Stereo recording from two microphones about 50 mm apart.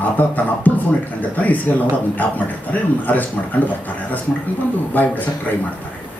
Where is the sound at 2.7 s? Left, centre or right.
Left.